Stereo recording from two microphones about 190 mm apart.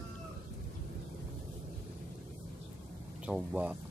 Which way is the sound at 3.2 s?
5° right (ahead or behind).